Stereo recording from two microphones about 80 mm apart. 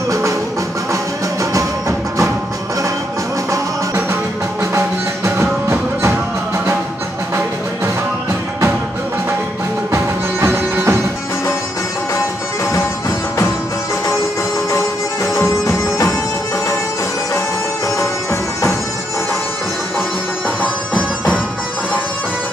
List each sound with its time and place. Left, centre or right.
1.4 s music: right
3.5 s music: right
9.8 s music: right
15.3 s music: left
17.9 s music: left
20.6 s music: centre